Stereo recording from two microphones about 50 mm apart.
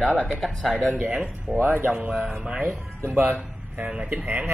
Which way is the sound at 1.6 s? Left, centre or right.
Right.